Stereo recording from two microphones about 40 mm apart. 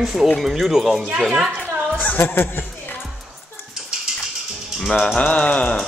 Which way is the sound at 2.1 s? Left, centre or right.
Left.